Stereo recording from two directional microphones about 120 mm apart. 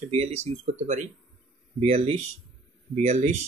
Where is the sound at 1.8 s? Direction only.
60° right (ahead or behind).